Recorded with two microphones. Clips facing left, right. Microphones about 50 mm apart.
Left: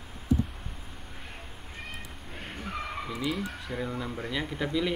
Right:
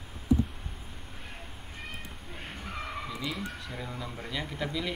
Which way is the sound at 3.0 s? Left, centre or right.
Centre.